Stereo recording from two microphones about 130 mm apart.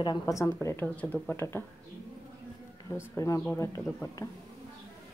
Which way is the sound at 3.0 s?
25° left (ahead or behind).